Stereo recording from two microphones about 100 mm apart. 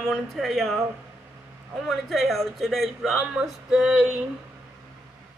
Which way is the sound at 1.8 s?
Centre (ahead or behind).